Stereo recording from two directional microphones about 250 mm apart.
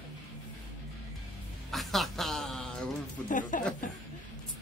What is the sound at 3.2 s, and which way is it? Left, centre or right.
Speech, left.